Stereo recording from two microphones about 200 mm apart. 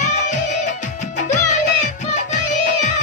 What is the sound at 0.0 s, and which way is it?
Music, 40° left (ahead or behind).